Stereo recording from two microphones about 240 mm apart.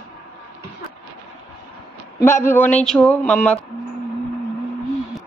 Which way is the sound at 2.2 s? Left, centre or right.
Centre.